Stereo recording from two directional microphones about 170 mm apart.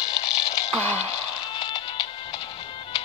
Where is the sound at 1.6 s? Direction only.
25° left (ahead or behind).